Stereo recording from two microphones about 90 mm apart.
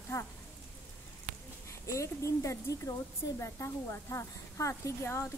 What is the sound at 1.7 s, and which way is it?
Speech, 35° left (ahead or behind).